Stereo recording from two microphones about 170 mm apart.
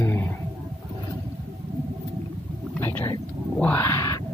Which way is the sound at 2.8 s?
10° left (ahead or behind).